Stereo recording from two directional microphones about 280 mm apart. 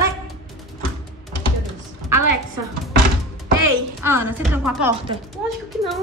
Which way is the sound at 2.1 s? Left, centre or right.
Right.